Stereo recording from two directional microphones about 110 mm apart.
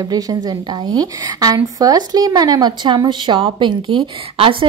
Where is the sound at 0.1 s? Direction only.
35° right (ahead or behind).